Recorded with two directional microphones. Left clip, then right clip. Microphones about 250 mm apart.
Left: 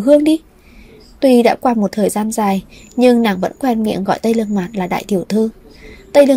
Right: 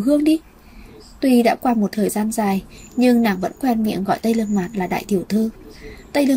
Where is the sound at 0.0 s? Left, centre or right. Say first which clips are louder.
Left 6 dB; left.